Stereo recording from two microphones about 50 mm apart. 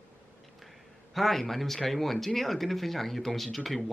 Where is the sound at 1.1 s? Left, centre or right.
Centre.